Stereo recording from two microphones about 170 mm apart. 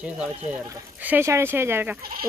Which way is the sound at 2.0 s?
60° right (ahead or behind).